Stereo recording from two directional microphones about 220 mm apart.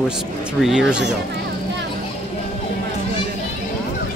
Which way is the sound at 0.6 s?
Centre (ahead or behind).